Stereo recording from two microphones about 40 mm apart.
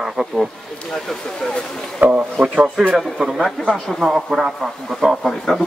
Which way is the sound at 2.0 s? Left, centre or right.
Right.